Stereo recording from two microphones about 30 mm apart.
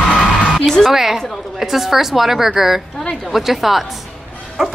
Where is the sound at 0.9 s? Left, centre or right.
Centre.